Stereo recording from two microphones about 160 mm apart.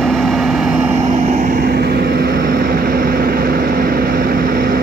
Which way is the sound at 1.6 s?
80° right.